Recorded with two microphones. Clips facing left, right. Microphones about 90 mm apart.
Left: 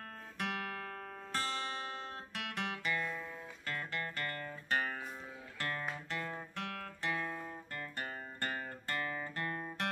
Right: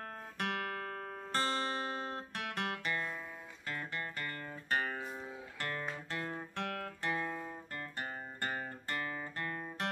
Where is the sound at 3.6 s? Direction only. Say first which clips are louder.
Even; 15° right (ahead or behind).